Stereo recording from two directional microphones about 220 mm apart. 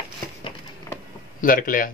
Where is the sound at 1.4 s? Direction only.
40° left (ahead or behind).